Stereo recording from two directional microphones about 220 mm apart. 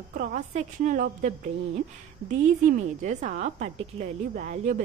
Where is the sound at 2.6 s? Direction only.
35° right (ahead or behind).